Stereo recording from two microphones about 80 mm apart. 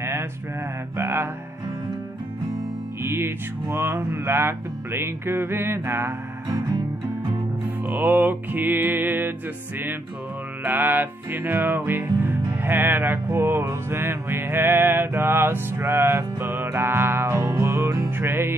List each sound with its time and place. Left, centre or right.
0.0 s a sound: right
0.9 s music: right
3.0 s music: right
7.9 s music: right
10.6 s music: right